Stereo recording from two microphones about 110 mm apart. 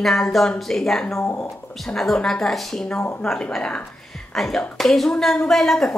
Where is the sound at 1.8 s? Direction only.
5° left (ahead or behind).